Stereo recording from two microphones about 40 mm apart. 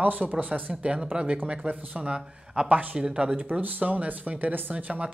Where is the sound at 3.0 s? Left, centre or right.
Centre.